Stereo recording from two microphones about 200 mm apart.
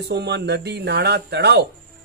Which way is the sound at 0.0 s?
55° right (ahead or behind).